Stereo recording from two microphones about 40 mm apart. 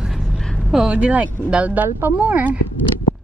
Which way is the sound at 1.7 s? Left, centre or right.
Right.